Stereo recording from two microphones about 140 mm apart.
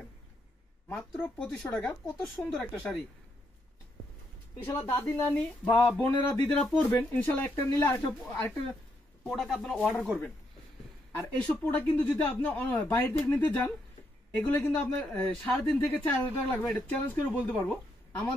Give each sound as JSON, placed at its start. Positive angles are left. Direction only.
{"t": 1.2, "sound": "speech", "side_deg": 10}
{"t": 4.9, "sound": "speech", "side_deg": 20}
{"t": 9.2, "sound": "speech", "side_deg": 0}
{"t": 11.1, "sound": "speech", "side_deg": 10}